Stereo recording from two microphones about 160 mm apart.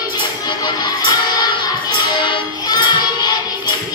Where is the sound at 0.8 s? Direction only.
25° left (ahead or behind).